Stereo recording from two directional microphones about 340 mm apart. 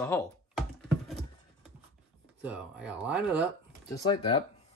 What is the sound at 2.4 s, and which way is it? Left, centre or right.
Speech, centre.